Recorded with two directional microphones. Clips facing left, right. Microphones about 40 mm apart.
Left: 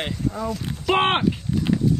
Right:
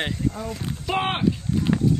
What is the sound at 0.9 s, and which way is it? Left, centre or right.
Speech, left.